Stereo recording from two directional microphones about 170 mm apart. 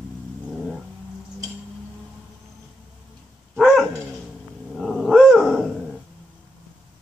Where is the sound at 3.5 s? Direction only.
Centre (ahead or behind).